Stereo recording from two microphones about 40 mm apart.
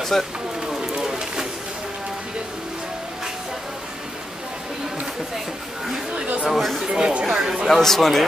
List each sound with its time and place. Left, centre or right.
0.1 s speech: centre
0.7 s a sound: centre
6.5 s speech: centre
6.9 s speech: right
7.2 s speech: centre
7.6 s speech: centre